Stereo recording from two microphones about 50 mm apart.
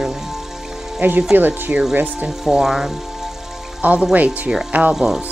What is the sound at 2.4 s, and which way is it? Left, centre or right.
Speech, centre.